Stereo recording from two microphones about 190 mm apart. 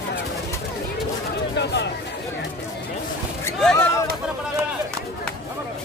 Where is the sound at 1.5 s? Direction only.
65° left (ahead or behind).